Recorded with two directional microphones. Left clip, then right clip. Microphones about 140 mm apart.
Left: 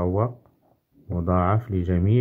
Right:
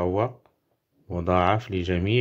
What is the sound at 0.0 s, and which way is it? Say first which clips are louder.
Speech: even; 30° right (ahead or behind).